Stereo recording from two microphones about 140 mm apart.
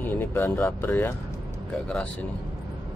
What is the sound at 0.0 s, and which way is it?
Speech, 15° left (ahead or behind).